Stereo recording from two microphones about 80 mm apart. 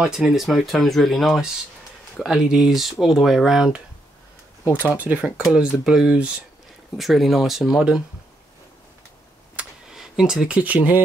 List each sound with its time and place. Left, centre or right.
0.0 s speech: centre
4.8 s speech: centre
5.4 s speech: centre
9.6 s a sound: centre
9.9 s speech: centre
10.6 s speech: centre